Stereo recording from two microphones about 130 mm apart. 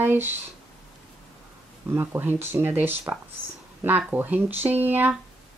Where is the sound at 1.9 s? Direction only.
15° right (ahead or behind).